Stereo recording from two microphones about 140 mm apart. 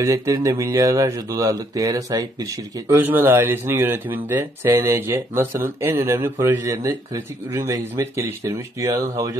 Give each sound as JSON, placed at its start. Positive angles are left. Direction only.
{"t": 0.0, "sound": "speech", "side_deg": -25}
{"t": 2.9, "sound": "speech", "side_deg": -15}